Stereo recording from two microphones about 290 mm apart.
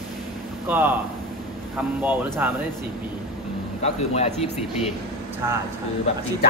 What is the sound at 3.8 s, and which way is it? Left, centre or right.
Speech, left.